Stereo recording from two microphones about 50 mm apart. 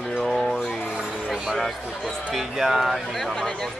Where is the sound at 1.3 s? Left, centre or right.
Centre.